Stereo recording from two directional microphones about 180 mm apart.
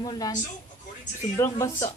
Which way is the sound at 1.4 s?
15° left (ahead or behind).